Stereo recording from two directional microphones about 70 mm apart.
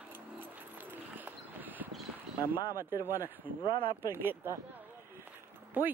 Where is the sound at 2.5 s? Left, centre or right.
Right.